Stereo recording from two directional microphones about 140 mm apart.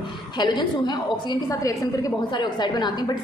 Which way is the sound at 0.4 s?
30° left (ahead or behind).